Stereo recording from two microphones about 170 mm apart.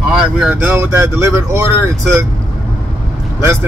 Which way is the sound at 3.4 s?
15° right (ahead or behind).